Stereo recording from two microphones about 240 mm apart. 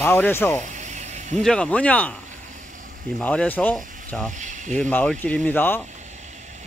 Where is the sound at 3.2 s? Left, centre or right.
Centre.